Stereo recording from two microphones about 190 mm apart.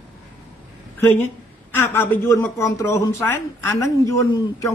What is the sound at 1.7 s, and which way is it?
A man's voice, 10° left (ahead or behind).